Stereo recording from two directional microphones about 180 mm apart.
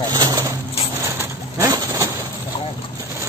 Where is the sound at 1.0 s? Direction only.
15° right (ahead or behind).